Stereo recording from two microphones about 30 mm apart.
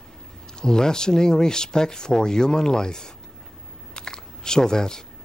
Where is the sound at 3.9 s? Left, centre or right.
Left.